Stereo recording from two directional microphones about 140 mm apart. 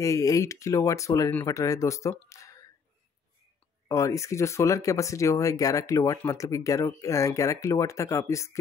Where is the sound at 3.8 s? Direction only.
20° left (ahead or behind).